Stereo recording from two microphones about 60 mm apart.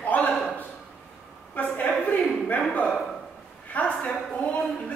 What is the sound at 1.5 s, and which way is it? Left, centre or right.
Speech, left.